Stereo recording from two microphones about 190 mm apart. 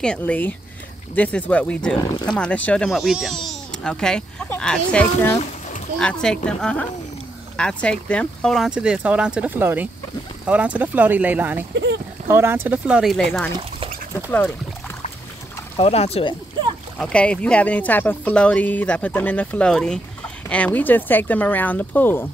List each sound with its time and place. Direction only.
0.0 s speech: 5° left (ahead or behind); by 11.6 s 10° right (ahead or behind)
11.7 s speech: 65° right (ahead or behind)
12.3 s speech: 10° right (ahead or behind); by 13.5 s 5° left (ahead or behind)
15.8 s speech: 35° left (ahead or behind)
17.0 s speech: 5° left (ahead or behind)